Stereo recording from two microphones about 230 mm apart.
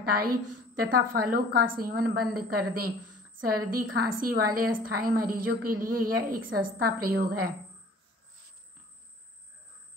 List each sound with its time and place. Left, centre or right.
0.0 s a woman's voice: right